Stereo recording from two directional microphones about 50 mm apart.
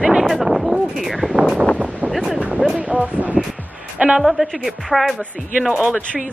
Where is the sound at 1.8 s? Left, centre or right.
Right.